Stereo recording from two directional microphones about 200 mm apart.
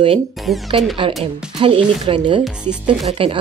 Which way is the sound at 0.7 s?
25° right (ahead or behind).